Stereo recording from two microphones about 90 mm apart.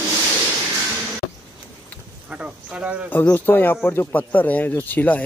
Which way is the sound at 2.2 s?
10° right (ahead or behind).